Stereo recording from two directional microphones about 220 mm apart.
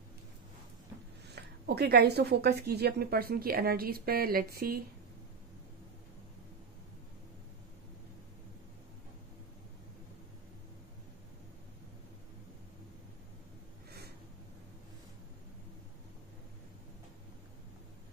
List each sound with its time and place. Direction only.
1.3 s speech: 45° right (ahead or behind)